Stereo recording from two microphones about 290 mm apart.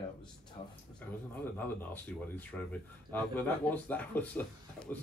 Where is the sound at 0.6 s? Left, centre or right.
Left.